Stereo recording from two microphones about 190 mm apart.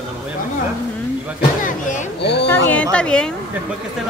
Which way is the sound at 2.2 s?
60° left (ahead or behind).